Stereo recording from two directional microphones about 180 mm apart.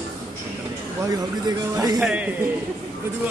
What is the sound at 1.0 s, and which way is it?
Speech, 20° right (ahead or behind).